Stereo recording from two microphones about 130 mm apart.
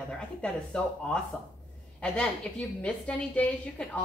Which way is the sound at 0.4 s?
5° left (ahead or behind).